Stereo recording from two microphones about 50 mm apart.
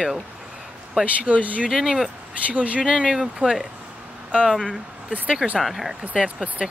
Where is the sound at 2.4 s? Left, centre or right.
Right.